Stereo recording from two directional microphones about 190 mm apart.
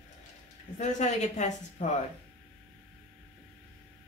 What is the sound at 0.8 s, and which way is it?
A woman's voice, 40° left (ahead or behind).